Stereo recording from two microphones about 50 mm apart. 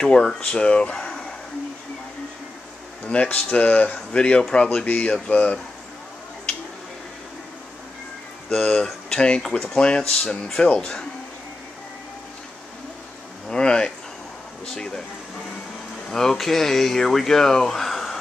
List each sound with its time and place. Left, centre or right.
0.0 s speech: centre
0.9 s a sound: centre
3.1 s speech: left
4.8 s speech: left
8.5 s speech: centre
13.5 s speech: centre
16.1 s speech: centre